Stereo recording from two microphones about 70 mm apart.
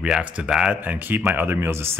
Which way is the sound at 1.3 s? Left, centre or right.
Right.